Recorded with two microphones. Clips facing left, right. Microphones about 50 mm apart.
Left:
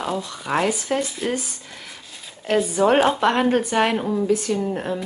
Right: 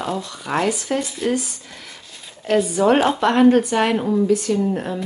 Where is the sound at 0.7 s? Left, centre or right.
Left.